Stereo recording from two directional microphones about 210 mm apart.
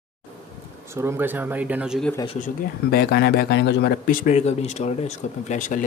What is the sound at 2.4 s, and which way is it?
Speech, 45° left (ahead or behind).